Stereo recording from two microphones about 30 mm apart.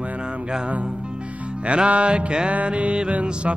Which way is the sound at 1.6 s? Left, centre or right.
Right.